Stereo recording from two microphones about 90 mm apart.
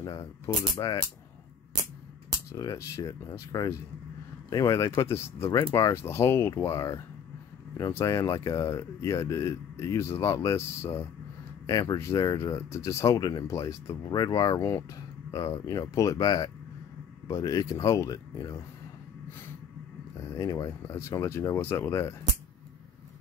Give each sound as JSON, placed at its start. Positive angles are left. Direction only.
{"t": 0.0, "sound": "speech", "side_deg": 45}
{"t": 2.5, "sound": "speech", "side_deg": 40}
{"t": 5.9, "sound": "speech", "side_deg": 30}
{"t": 11.6, "sound": "speech", "side_deg": 40}
{"t": 14.1, "sound": "speech", "side_deg": 50}
{"t": 14.6, "sound": "speech", "side_deg": 25}
{"t": 15.3, "sound": "speech", "side_deg": 35}
{"t": 20.3, "sound": "speech", "side_deg": 40}
{"t": 20.8, "sound": "speech", "side_deg": 30}